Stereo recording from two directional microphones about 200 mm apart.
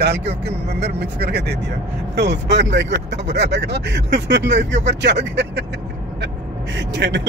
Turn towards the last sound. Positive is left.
turn(degrees=-60)  # may be behind; listen again after turning